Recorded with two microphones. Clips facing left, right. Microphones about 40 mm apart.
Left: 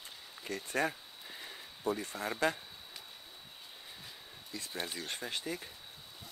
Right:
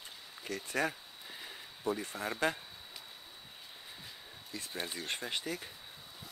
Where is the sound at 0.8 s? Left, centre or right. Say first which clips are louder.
Left 1 dB; left.